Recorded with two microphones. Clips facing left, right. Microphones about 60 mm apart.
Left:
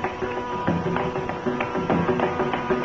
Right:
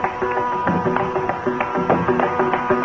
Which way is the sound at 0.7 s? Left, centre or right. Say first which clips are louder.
Right 5 dB; right.